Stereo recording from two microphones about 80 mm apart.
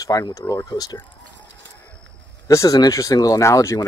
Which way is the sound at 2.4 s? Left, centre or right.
Left.